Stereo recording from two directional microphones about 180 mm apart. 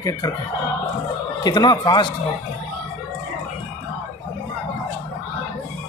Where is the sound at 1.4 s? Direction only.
25° left (ahead or behind).